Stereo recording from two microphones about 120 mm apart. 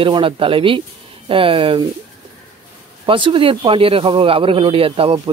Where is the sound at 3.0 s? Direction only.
45° right (ahead or behind).